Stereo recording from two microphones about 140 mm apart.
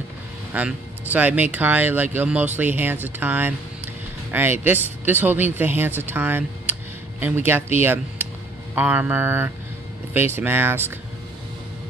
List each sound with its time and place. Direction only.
0.5 s speech: 10° right (ahead or behind)